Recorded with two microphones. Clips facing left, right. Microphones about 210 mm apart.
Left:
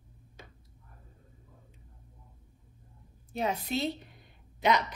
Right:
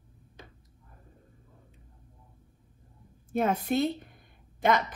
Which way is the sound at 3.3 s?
50° right (ahead or behind).